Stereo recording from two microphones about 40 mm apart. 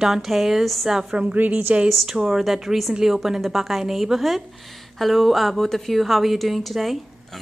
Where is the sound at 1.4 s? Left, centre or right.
Right.